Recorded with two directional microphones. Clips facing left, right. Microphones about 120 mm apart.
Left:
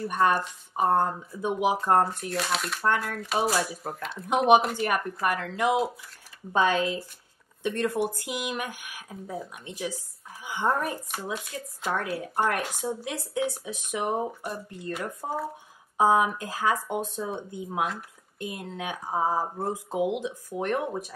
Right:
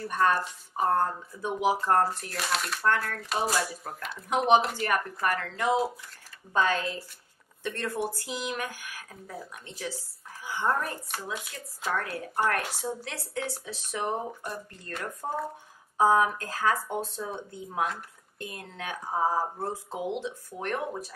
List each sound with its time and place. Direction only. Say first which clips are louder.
0.1 s speech: left 1 dB; 10° left (ahead or behind)
0.9 s speech: left 2 dB; 15° left (ahead or behind)
2.2 s speech: left 3 dB; centre (ahead or behind)
4.5 s speech: left 2 dB; 15° left (ahead or behind)